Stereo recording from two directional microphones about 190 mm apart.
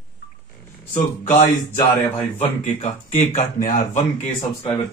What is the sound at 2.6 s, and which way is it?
Speech, 35° left (ahead or behind).